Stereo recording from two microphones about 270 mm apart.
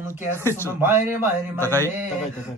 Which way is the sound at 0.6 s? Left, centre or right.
Centre.